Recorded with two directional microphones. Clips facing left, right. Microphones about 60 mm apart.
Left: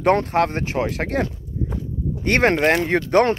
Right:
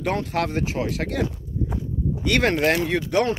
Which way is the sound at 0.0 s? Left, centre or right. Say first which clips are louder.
Left 7 dB; left.